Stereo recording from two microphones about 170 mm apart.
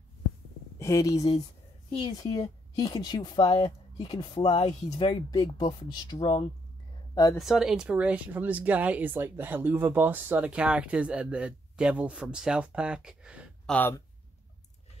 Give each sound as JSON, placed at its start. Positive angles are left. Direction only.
{"t": 0.7, "sound": "a woman's voice", "side_deg": 15}
{"t": 7.3, "sound": "speech", "side_deg": 0}
{"t": 13.7, "sound": "speech", "side_deg": 10}